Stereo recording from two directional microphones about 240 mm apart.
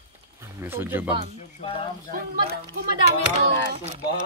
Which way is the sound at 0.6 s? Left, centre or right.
Centre.